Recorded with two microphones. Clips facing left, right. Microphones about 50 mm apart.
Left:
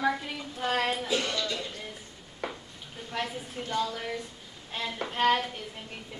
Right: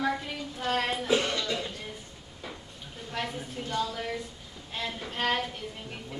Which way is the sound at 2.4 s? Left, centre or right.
Left.